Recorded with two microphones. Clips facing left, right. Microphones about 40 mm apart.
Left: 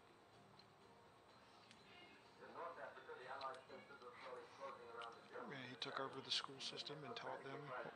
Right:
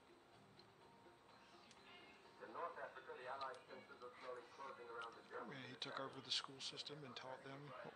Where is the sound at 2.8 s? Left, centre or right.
Centre.